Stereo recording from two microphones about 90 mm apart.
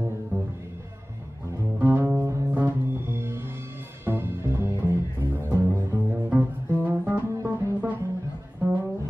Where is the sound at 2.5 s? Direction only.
25° right (ahead or behind).